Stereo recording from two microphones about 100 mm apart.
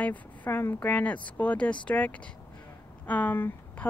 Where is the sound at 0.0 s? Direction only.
15° left (ahead or behind).